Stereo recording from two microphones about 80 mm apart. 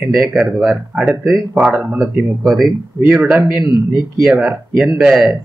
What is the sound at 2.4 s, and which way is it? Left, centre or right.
Speech, centre.